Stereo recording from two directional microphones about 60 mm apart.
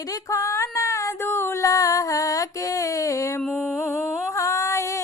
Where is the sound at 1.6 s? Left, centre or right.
Left.